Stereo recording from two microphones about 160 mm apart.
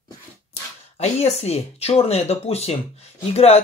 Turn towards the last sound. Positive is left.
turn(degrees=40)  # may be behind; listen again after turning